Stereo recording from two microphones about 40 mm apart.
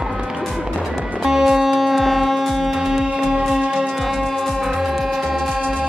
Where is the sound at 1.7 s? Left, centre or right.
Centre.